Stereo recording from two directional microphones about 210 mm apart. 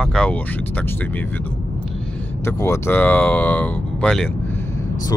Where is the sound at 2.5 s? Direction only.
10° left (ahead or behind).